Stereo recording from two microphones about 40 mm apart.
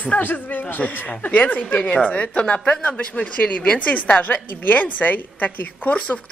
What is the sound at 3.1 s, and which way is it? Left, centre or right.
A woman's voice, left.